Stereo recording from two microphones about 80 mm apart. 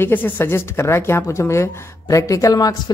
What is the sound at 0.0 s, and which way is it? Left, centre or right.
A woman's voice, left.